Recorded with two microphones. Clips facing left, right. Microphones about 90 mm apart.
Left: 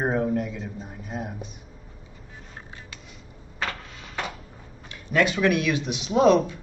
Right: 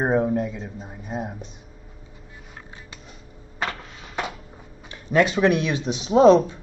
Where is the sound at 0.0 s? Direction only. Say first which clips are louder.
Right 3 dB; 20° right (ahead or behind).